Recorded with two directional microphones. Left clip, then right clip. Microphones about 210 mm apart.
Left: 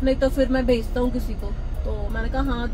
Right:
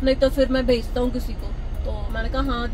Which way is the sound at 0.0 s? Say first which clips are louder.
Right 2 dB; 15° left (ahead or behind).